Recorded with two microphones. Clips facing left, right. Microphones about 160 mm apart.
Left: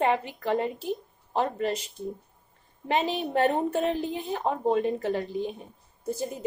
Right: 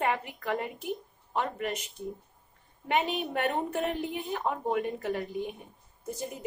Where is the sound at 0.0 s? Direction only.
25° left (ahead or behind).